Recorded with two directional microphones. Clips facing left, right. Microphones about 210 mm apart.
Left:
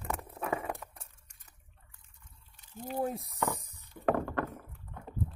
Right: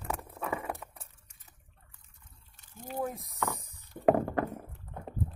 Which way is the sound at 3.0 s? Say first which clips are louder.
Left 2 dB; 30° left (ahead or behind).